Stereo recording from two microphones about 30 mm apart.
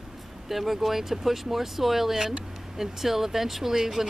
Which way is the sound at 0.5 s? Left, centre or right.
Centre.